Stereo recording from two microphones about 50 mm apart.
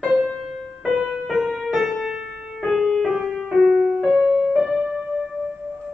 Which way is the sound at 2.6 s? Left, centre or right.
Centre.